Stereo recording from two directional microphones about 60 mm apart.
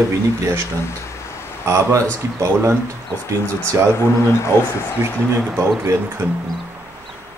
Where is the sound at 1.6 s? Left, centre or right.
Right.